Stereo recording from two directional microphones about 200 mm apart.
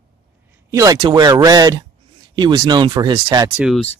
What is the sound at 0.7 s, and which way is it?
Speech, 20° right (ahead or behind).